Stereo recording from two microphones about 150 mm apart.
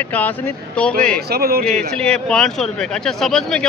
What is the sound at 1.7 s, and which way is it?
Speech, 5° left (ahead or behind).